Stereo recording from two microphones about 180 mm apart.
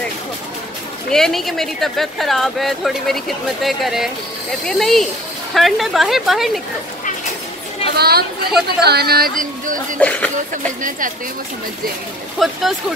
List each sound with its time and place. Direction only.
1.1 s speech: centre (ahead or behind)
7.9 s speech: 60° right (ahead or behind)
9.9 s speech: 10° left (ahead or behind)
12.4 s speech: centre (ahead or behind)